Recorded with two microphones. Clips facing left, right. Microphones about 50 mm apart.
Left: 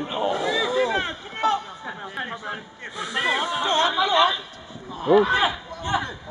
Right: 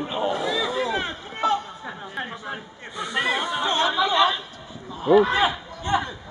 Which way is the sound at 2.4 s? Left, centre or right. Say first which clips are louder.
Left 1 dB; centre.